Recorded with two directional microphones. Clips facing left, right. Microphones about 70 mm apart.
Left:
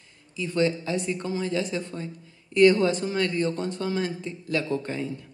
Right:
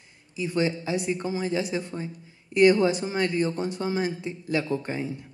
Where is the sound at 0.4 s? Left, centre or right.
Centre.